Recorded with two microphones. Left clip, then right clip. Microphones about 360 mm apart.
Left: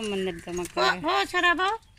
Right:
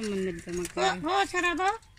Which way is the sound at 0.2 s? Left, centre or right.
Left.